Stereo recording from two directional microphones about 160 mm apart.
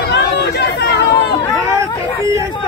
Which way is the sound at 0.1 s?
90° left.